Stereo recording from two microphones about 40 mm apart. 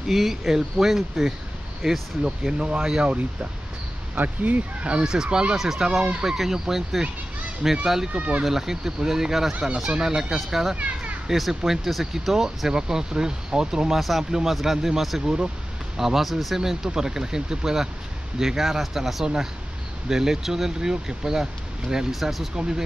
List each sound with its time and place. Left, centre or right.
0.1 s speech: centre; by 2.9 s right
4.1 s speech: right
5.0 s speech: centre
8.5 s speech: centre
10.8 s a sound: right
11.2 s speech: centre
13.9 s speech: centre
15.2 s speech: centre
16.0 s speech: centre
22.6 s speech: centre